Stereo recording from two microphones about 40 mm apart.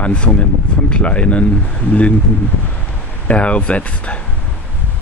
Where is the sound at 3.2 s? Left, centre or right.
Left.